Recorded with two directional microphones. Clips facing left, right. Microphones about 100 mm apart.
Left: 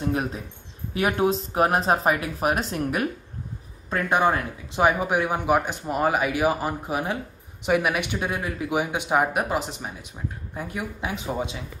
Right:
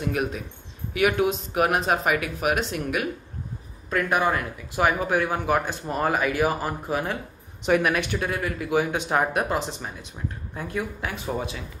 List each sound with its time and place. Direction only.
0.1 s speech: 30° left (ahead or behind)